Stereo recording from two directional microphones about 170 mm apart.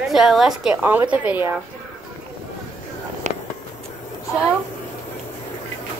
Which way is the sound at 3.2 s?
45° right (ahead or behind).